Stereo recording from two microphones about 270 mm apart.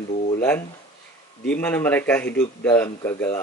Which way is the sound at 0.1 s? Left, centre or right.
Left.